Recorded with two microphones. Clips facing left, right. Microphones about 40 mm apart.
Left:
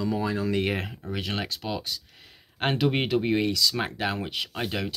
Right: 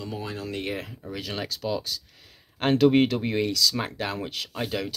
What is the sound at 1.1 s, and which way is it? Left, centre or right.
Speech, left.